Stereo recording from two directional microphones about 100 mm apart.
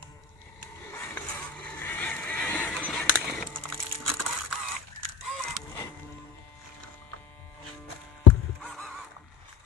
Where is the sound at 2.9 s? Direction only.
Centre (ahead or behind).